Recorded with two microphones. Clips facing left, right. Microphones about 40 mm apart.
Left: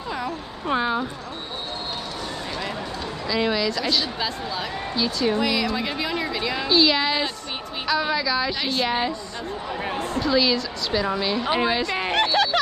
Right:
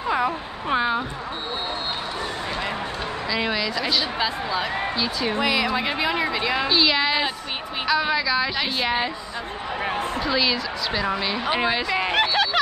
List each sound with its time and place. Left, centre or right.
0.7 s a woman's voice: centre
3.3 s a woman's voice: centre
10.1 s a woman's voice: centre